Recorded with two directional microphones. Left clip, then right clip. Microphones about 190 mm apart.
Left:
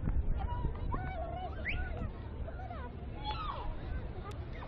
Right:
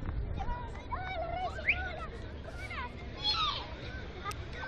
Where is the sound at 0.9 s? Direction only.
40° right (ahead or behind).